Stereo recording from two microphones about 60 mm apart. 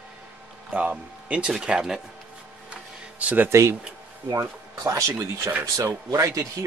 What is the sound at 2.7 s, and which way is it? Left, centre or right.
Music, right.